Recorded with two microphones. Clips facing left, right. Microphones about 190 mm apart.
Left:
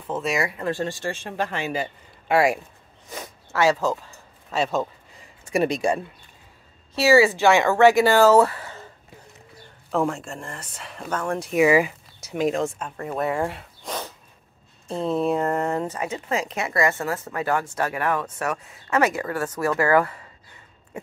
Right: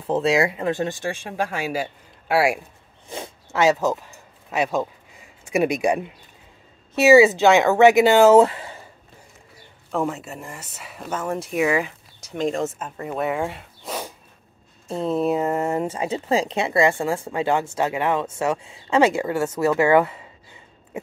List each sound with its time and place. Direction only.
0.0 s speech: 30° right (ahead or behind); by 2.6 s 5° right (ahead or behind)
3.1 s zipper: 25° right (ahead or behind)
7.0 s speech: 20° right (ahead or behind)
9.8 s speech: centre (ahead or behind)
15.9 s speech: 30° right (ahead or behind)